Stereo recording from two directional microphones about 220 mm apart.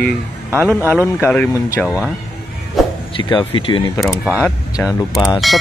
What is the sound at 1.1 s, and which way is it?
Speech, 10° left (ahead or behind).